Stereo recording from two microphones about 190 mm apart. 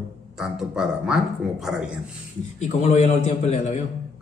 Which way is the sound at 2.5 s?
40° left (ahead or behind).